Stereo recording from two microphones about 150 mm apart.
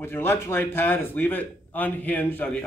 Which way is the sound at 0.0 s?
15° left (ahead or behind).